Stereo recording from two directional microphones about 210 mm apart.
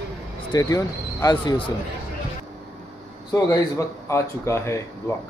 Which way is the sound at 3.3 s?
15° left (ahead or behind).